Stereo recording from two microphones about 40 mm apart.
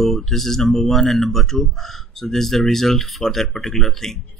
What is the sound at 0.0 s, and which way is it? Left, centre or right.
Speech, centre.